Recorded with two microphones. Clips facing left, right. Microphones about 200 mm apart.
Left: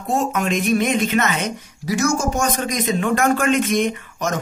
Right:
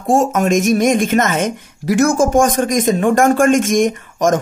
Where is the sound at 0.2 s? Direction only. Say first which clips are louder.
Right 6 dB; 45° right (ahead or behind).